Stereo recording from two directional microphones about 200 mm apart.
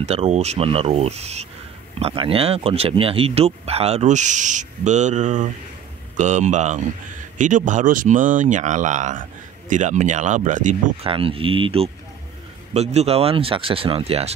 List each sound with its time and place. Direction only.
0.0 s speech: 35° right (ahead or behind)
11.1 s speech: 25° right (ahead or behind)